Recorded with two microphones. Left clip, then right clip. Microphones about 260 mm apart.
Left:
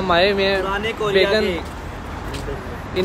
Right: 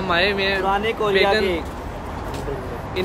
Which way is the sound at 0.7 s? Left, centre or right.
Right.